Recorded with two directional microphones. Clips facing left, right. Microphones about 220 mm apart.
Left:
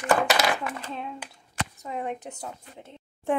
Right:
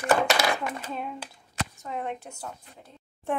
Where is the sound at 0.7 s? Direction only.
10° right (ahead or behind).